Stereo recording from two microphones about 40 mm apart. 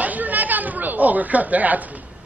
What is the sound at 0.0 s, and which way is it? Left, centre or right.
Speech, right.